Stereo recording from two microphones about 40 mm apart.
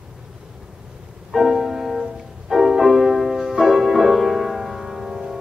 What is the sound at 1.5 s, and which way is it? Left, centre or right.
Music, centre.